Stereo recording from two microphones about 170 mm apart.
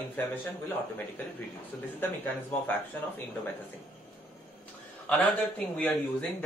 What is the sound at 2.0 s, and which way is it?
Speech, 10° left (ahead or behind).